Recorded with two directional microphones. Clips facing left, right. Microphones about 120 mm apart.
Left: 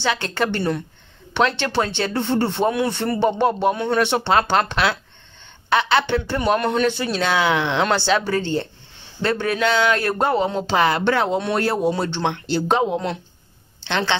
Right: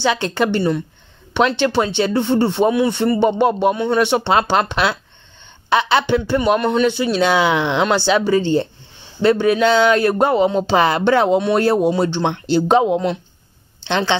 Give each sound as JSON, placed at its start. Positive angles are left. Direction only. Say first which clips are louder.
{"t": 0.0, "sound": "speech", "louder": "right 4 dB", "side_deg": -20}
{"t": 7.2, "sound": "speech", "louder": "right 4 dB", "side_deg": -20}